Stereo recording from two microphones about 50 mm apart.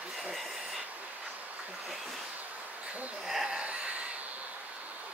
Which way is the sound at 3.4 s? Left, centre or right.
Right.